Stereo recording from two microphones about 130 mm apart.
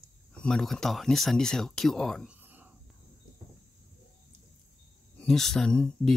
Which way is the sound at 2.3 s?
15° right (ahead or behind).